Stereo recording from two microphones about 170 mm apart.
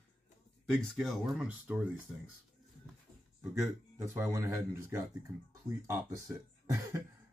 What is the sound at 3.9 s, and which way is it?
Speech, 15° right (ahead or behind).